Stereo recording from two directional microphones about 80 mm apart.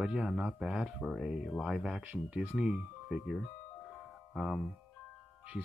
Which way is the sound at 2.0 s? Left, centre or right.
Right.